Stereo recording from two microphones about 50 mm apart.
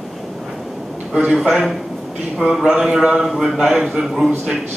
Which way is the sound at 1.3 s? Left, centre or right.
Centre.